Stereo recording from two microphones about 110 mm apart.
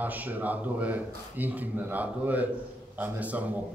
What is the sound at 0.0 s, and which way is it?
A man's voice, 15° right (ahead or behind).